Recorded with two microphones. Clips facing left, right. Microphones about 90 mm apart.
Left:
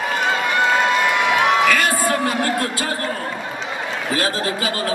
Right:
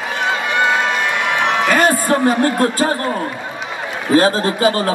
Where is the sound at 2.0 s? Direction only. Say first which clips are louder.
Right 5 dB; 40° right (ahead or behind).